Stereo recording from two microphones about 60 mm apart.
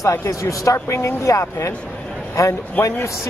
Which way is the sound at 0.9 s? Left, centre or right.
Left.